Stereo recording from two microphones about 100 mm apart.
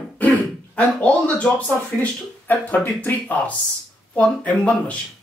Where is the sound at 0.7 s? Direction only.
15° left (ahead or behind).